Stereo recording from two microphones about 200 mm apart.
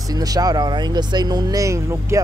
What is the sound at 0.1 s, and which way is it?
Speech, 20° right (ahead or behind).